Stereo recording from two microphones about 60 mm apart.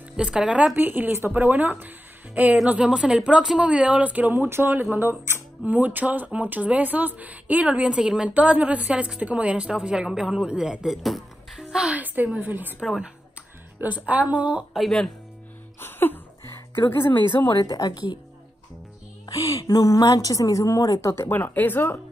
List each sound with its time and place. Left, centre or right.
0.2 s speech: centre
0.7 s speech: right
2.5 s speech: centre
4.3 s speech: right
5.7 s a woman's voice: right; by 11.6 s centre
11.7 s a woman's voice: centre
12.4 s speech: right
13.7 s a woman's voice: right
14.7 s speech: centre
15.8 s a sound: left
17.6 s a woman's voice: left
19.2 s a woman's voice: left
21.1 s speech: left
21.4 s speech: left